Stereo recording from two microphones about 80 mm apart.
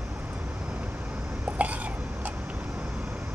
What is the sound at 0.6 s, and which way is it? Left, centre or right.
Vehicle, centre.